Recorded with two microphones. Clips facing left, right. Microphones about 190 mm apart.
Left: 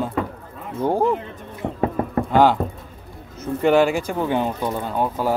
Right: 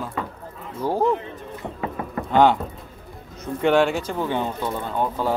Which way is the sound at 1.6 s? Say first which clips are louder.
Left 7 dB; 45° left (ahead or behind).